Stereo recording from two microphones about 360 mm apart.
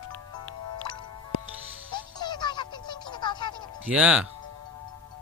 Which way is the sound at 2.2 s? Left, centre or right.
Centre.